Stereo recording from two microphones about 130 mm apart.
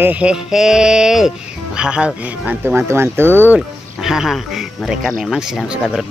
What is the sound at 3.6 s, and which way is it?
Speech, 5° right (ahead or behind).